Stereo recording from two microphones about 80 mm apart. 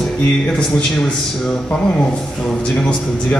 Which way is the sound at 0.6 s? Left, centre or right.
Centre.